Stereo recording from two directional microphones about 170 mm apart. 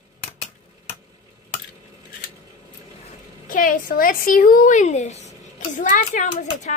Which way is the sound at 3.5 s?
55° left (ahead or behind).